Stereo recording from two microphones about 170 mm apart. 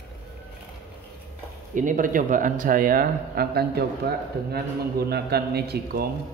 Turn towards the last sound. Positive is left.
turn(degrees=-65)  # may be behind; listen again after turning